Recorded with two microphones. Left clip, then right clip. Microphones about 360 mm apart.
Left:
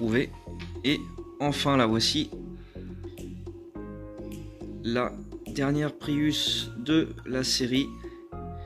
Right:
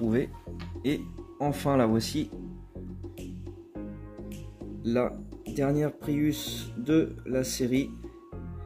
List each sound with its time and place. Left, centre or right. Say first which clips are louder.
0.0 s speech: left 2 dB; centre
4.8 s speech: right 1 dB; centre